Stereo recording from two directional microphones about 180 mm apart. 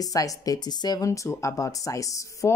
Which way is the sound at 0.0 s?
20° left (ahead or behind).